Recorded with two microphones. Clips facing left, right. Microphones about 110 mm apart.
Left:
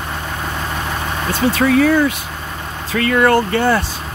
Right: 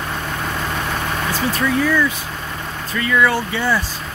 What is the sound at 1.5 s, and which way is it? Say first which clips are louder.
Speech: left 5 dB; 70° left (ahead or behind).